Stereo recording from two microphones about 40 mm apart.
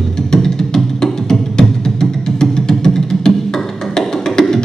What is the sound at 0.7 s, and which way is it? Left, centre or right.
Music, centre.